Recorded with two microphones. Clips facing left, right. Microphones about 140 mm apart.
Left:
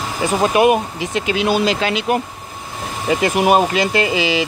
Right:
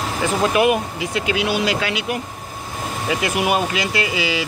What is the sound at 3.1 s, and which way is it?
Speech, 40° left (ahead or behind).